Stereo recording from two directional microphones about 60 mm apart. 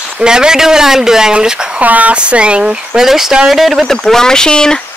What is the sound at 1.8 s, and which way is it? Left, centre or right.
Speech, right.